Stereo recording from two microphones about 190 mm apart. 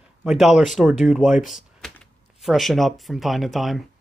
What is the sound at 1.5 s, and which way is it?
Typing, centre (ahead or behind).